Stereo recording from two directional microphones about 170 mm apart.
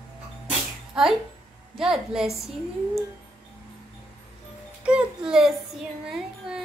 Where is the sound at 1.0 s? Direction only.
5° right (ahead or behind).